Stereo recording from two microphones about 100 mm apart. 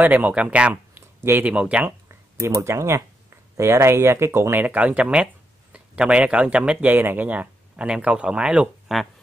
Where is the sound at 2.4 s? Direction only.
30° right (ahead or behind); by 9.1 s 5° right (ahead or behind).